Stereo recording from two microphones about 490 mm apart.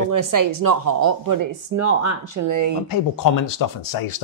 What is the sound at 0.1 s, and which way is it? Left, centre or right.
Speech, right.